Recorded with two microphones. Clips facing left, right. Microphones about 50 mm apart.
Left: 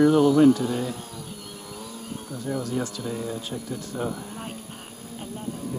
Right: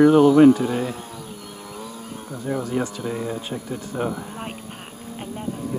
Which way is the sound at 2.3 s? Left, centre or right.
Right.